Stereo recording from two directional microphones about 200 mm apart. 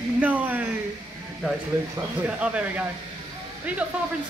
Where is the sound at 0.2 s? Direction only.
10° right (ahead or behind).